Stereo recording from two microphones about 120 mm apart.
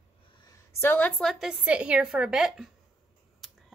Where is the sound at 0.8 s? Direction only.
15° left (ahead or behind).